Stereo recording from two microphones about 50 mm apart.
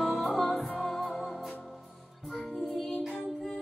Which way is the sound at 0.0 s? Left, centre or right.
Centre.